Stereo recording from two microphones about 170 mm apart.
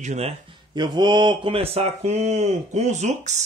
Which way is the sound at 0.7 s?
25° right (ahead or behind).